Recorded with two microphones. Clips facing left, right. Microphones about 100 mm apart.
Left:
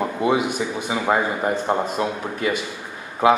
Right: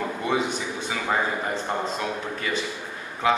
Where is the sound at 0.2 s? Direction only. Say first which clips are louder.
Left 6 dB; 15° left (ahead or behind).